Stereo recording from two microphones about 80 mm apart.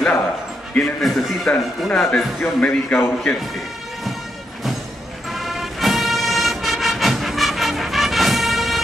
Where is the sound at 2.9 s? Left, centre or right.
Left.